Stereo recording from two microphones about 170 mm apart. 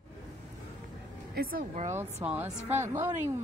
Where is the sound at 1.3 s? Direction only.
60° right (ahead or behind).